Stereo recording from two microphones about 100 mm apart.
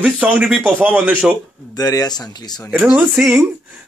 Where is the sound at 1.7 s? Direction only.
40° left (ahead or behind).